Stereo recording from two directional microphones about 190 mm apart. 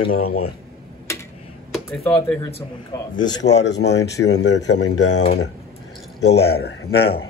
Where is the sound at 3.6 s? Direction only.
65° left (ahead or behind).